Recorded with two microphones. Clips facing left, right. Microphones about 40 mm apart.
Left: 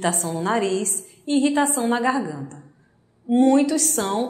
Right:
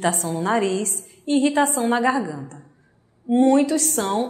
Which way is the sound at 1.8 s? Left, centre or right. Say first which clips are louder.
Right 1 dB; right.